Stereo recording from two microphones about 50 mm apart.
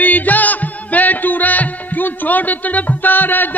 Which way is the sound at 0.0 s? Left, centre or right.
Left.